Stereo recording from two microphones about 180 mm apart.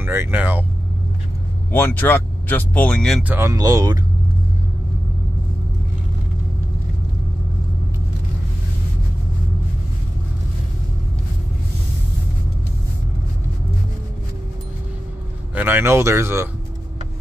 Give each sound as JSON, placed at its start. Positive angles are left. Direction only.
{"t": 0.0, "sound": "speech", "side_deg": -10}
{"t": 1.7, "sound": "speech", "side_deg": 10}
{"t": 3.3, "sound": "speech", "side_deg": -15}
{"t": 15.5, "sound": "speech", "side_deg": -10}